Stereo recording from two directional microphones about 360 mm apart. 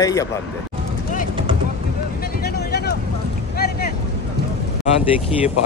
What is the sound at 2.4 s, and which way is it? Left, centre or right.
Vehicle, left.